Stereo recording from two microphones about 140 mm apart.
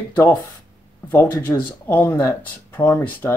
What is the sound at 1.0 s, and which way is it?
Speech, 15° left (ahead or behind).